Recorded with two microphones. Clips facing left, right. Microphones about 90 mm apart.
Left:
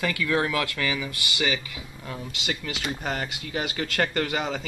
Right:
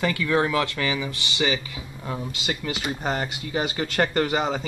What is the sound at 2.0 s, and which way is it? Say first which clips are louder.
Speech: right 5 dB; 20° right (ahead or behind).